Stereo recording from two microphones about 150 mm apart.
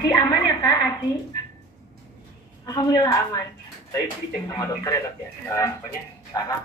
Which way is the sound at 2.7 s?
25° left (ahead or behind).